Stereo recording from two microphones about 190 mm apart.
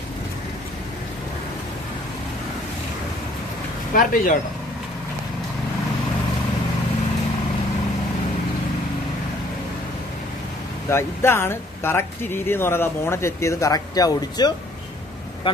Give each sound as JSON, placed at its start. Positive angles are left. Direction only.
{"t": 3.9, "sound": "speech", "side_deg": 45}
{"t": 10.9, "sound": "speech", "side_deg": 15}